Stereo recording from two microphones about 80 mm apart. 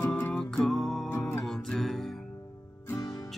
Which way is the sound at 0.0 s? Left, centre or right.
Left.